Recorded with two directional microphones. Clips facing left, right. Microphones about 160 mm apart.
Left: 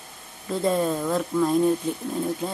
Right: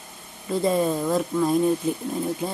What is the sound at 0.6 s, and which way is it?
Speech, 5° right (ahead or behind).